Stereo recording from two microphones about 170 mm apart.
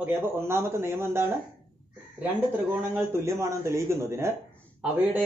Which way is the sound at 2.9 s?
15° right (ahead or behind).